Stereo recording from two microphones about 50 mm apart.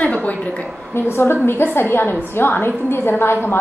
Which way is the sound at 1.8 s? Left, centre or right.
Left.